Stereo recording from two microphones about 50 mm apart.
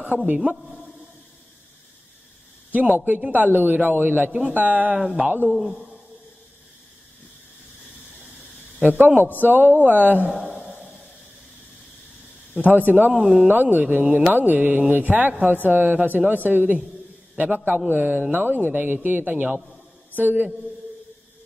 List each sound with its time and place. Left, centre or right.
0.1 s speech: right
2.7 s a man's voice: right
4.3 s speech: right
4.9 s speech: centre
5.3 s speech: right
8.7 s speech: right
10.3 s a sound: centre
12.6 s speech: right
13.1 s speech: centre
13.5 s speech: right
14.0 s speech: right
14.3 s speech: right